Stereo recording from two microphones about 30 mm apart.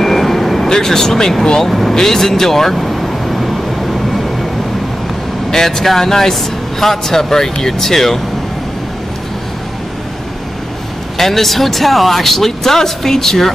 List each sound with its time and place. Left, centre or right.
0.0 s vehicle: centre
0.7 s speech: centre
1.7 s speech: centre
2.7 s vehicle: centre
5.5 s speech: centre
11.1 s speech: centre